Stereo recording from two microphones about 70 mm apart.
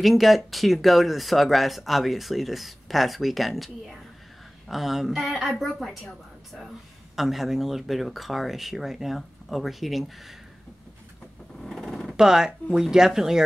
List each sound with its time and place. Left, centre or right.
0.0 s speech: centre
11.6 s a sound: centre
12.2 s speech: centre